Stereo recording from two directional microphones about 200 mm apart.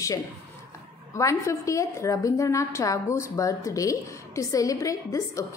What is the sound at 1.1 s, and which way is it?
A woman's voice, 15° left (ahead or behind).